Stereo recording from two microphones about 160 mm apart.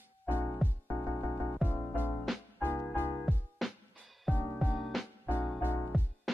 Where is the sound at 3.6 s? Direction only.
Centre (ahead or behind).